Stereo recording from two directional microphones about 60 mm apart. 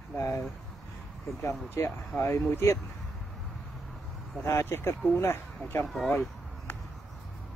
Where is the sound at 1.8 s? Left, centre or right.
Left.